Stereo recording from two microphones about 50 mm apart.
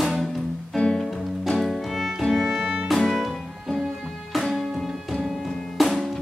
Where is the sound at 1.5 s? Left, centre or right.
Centre.